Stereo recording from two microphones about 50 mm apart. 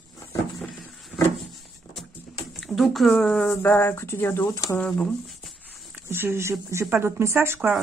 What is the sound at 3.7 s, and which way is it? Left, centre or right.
Speech, left.